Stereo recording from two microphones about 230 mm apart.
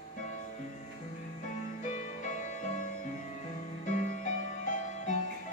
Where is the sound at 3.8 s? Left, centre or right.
Left.